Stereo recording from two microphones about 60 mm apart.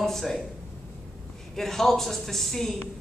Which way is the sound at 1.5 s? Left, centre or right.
Centre.